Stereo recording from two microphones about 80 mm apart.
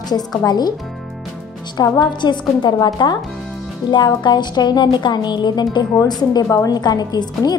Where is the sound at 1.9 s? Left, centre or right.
Left.